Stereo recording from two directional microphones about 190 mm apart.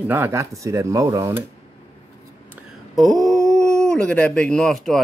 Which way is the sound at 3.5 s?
5° left (ahead or behind).